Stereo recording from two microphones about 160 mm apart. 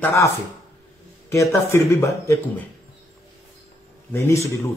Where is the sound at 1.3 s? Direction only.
15° left (ahead or behind).